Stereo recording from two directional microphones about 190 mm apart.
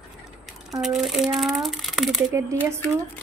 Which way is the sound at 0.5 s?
Centre (ahead or behind).